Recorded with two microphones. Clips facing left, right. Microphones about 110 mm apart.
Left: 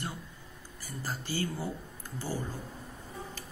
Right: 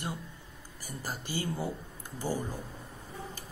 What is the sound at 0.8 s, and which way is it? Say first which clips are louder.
Speech: left 1 dB; 15° right (ahead or behind).